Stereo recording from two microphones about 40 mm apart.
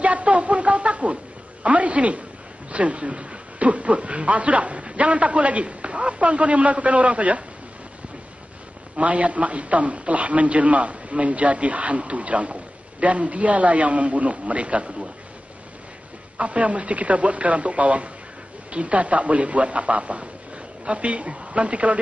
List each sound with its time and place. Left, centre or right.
0.0 s a sound: right
2.7 s a man's voice: right
9.0 s a man's voice: right
16.3 s a man's voice: right